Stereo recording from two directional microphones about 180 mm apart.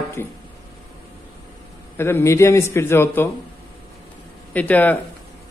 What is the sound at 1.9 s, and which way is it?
A man's voice, 15° left (ahead or behind).